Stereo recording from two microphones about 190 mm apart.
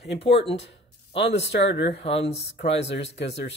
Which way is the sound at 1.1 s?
65° left (ahead or behind).